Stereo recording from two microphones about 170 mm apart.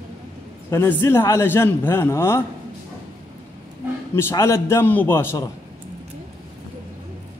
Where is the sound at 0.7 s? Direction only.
15° left (ahead or behind).